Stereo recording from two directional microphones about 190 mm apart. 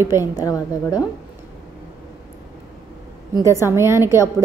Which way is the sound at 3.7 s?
15° right (ahead or behind).